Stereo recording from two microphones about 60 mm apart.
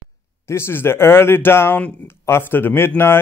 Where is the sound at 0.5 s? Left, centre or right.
Left.